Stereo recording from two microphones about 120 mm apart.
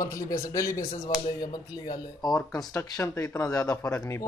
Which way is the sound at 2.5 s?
25° left (ahead or behind).